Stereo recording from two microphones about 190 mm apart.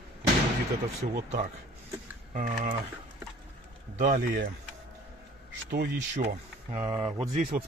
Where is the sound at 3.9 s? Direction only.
45° right (ahead or behind).